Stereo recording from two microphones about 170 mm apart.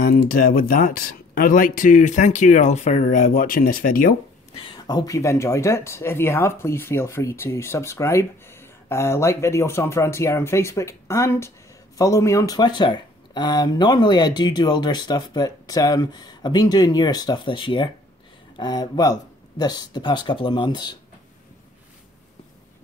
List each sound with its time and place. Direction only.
0.0 s speech: 55° left (ahead or behind)
4.6 s speech: 25° left (ahead or behind)